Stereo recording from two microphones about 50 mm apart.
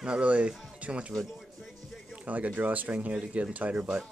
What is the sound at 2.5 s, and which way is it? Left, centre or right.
Speech, right.